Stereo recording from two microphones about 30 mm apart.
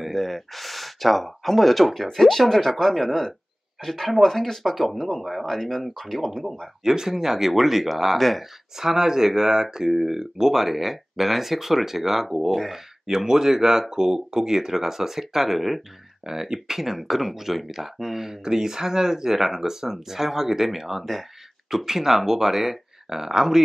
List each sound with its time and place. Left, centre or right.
0.0 s speech: centre
6.8 s speech: centre
8.2 s speech: centre
8.7 s speech: centre
13.0 s speech: centre
16.3 s speech: centre
18.4 s speech: right; by 21.3 s centre
21.6 s speech: centre